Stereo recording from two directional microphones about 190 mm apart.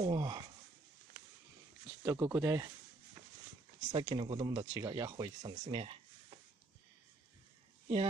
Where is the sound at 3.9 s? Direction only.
25° right (ahead or behind).